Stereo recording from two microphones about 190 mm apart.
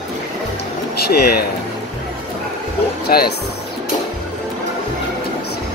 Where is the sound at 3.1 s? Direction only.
50° left (ahead or behind).